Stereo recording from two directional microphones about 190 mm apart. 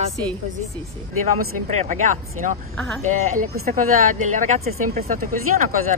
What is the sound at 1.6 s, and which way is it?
Speech, 40° right (ahead or behind).